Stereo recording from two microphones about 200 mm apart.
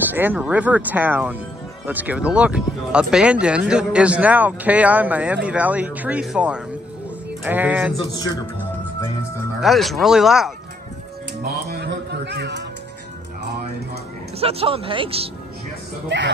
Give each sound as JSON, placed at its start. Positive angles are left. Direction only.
{"t": 0.1, "sound": "speech", "side_deg": -10}
{"t": 9.6, "sound": "speech", "side_deg": 0}
{"t": 11.4, "sound": "speech", "side_deg": -55}
{"t": 14.4, "sound": "speech", "side_deg": -30}